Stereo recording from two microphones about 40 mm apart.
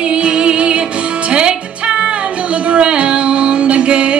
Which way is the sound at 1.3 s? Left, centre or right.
Right.